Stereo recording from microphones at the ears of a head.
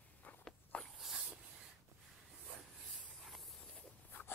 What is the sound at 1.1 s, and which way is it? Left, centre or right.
Dog, right.